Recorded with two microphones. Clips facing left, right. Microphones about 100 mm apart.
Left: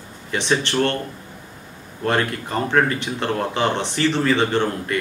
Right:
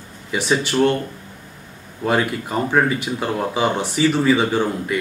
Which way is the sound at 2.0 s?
5° right (ahead or behind).